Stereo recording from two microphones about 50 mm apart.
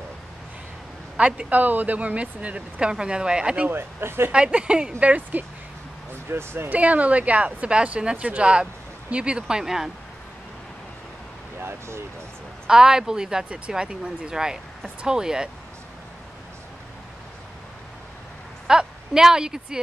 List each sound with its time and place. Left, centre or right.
1.1 s speech: right
3.7 s speech: right
4.3 s speech: centre
5.0 s speech: right
6.3 s speech: right
6.7 s speech: right; by 9.8 s centre
12.6 s speech: centre
18.7 s a woman's voice: centre